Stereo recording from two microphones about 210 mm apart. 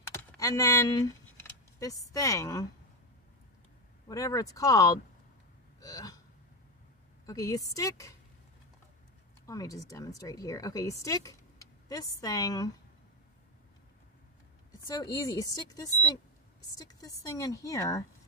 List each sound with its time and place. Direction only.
0.0 s a sound: 15° left (ahead or behind)
4.1 s a woman's voice: 15° left (ahead or behind)
5.8 s a sound: 15° left (ahead or behind)
7.2 s a woman's voice: 15° left (ahead or behind)
9.5 s a woman's voice: 15° left (ahead or behind)
14.9 s a woman's voice: 15° left (ahead or behind)